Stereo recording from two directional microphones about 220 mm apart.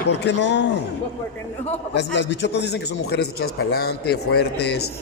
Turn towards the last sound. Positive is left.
turn(degrees=45)  # may be behind; listen again after turning